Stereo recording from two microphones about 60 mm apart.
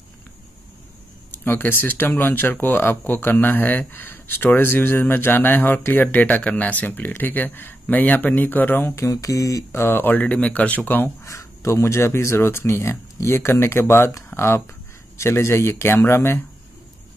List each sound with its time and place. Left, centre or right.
1.3 s speech: left
8.9 s mantra: left
9.8 s speech: left
11.2 s speech: left